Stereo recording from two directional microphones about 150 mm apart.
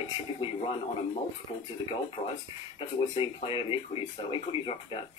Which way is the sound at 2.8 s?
35° left (ahead or behind).